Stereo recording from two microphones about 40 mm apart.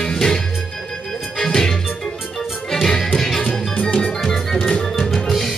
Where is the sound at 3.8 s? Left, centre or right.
Centre.